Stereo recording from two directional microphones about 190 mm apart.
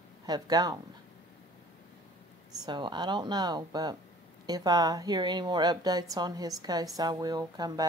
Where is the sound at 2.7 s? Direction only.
25° right (ahead or behind).